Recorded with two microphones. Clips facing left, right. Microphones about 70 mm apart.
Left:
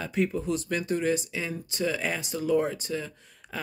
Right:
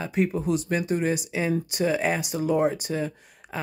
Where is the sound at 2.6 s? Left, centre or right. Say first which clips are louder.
Right 4 dB; centre.